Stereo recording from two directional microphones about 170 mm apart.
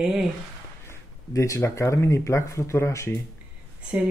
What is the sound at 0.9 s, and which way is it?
Speech, 20° left (ahead or behind).